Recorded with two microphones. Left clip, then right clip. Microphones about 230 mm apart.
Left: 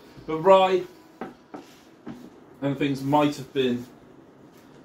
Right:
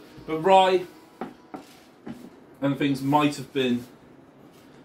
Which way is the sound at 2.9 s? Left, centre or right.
Right.